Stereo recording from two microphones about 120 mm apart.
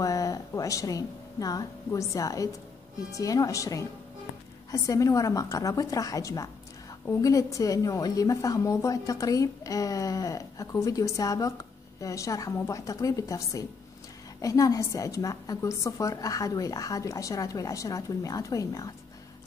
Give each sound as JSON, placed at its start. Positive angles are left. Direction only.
{"t": 0.0, "sound": "a woman's voice", "side_deg": 30}